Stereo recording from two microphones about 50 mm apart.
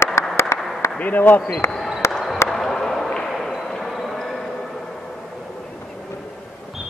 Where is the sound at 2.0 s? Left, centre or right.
Left.